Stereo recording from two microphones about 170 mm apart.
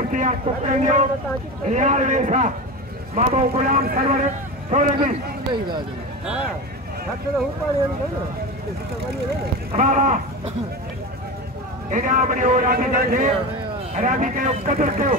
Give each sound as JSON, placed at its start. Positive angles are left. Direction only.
{"t": 0.1, "sound": "a man's voice", "side_deg": -50}
{"t": 6.2, "sound": "speech", "side_deg": -5}
{"t": 9.8, "sound": "a man's voice", "side_deg": -50}
{"t": 11.9, "sound": "a man's voice", "side_deg": -50}